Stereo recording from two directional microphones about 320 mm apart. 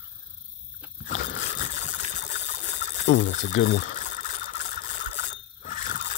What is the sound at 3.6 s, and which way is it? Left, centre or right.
Ratchet, left.